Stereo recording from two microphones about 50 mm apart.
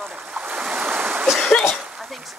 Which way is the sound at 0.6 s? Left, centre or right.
Centre.